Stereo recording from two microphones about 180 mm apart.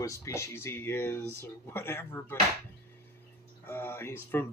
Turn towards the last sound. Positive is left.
turn(degrees=15)  # may be behind; listen again after turning